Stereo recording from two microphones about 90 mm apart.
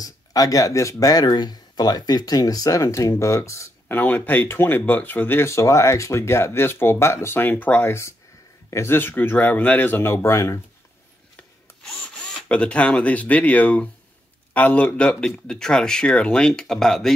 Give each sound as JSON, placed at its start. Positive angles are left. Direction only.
{"t": 0.0, "sound": "speech", "side_deg": 45}
{"t": 3.9, "sound": "speech", "side_deg": 20}
{"t": 11.3, "sound": "tools", "side_deg": 10}
{"t": 14.5, "sound": "speech", "side_deg": 15}